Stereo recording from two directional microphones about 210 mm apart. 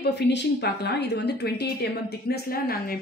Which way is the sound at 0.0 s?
55° left (ahead or behind).